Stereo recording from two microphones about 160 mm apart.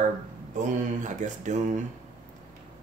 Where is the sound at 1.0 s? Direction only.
50° right (ahead or behind).